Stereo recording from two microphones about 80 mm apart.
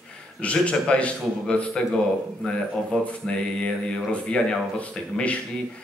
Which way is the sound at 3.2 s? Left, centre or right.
Centre.